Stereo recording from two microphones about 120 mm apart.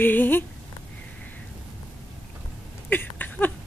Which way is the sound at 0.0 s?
15° left (ahead or behind).